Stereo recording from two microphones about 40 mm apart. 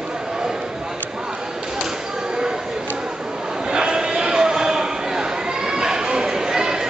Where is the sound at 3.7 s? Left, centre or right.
Centre.